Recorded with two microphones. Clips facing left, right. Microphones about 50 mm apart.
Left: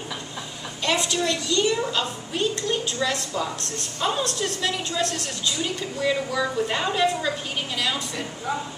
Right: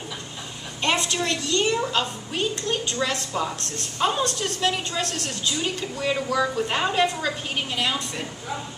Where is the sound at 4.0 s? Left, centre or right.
Centre.